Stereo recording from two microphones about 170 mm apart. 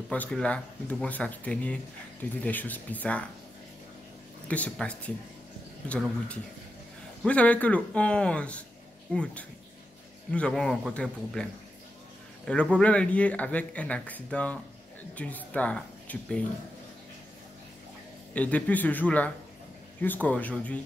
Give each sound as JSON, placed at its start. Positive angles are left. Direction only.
{"t": 0.1, "sound": "speech", "side_deg": 5}
{"t": 4.5, "sound": "speech", "side_deg": 5}
{"t": 12.4, "sound": "speech", "side_deg": 5}
{"t": 18.3, "sound": "speech", "side_deg": 10}